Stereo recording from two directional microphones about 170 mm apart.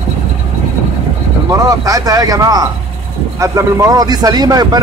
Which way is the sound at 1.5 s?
20° right (ahead or behind).